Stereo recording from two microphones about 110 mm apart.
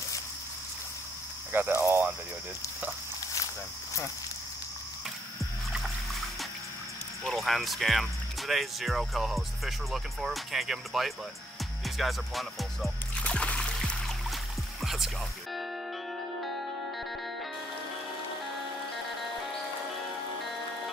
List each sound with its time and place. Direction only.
1.5 s speech: 20° right (ahead or behind)
7.2 s speech: centre (ahead or behind)
13.2 s music: 10° left (ahead or behind)
14.8 s music: 5° right (ahead or behind)